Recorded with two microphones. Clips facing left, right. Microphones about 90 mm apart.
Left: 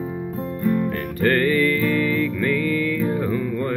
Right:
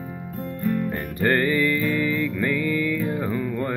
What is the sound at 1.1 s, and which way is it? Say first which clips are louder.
Music: left 2 dB; 15° right (ahead or behind).